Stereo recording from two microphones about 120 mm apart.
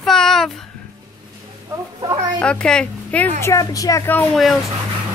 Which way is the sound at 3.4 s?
30° left (ahead or behind).